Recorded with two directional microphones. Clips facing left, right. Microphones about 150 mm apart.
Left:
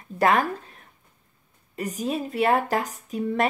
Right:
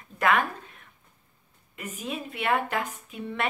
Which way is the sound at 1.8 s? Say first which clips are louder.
Left 7 dB; 35° left (ahead or behind).